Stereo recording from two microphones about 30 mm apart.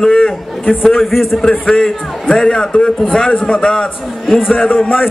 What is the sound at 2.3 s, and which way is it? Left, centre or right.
A man's voice, left.